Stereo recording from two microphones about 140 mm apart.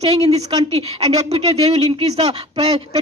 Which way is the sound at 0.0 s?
45° right (ahead or behind).